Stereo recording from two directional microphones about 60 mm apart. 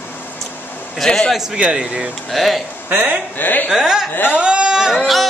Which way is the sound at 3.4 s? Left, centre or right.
Left.